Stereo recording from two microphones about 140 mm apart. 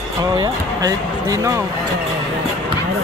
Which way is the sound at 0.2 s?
25° right (ahead or behind).